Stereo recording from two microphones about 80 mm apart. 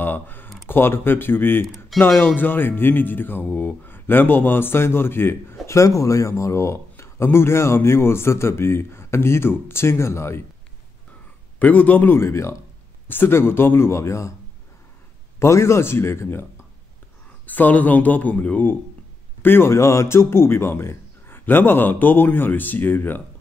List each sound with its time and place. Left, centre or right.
0.0 s a sound: left
0.7 s a man's voice: left
11.6 s a man's voice: centre; by 14.3 s left
15.3 s speech: left
17.5 s a man's voice: left